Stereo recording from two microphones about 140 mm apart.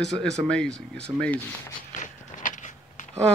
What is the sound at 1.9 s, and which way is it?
Walk, 65° left (ahead or behind).